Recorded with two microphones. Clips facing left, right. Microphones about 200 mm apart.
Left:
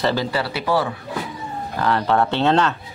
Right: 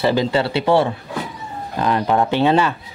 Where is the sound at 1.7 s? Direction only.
15° right (ahead or behind).